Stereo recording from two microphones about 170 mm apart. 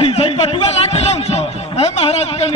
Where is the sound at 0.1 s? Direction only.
35° left (ahead or behind).